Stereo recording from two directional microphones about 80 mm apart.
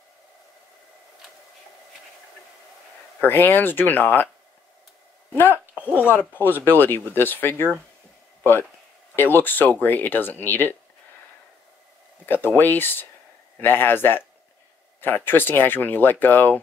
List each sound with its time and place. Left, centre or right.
3.2 s speech: left
5.3 s speech: left
9.1 s speech: left
12.3 s speech: left